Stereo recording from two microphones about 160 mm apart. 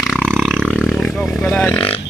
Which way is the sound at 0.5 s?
5° right (ahead or behind).